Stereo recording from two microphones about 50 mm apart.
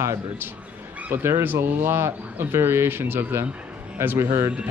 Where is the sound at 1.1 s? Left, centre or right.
Right.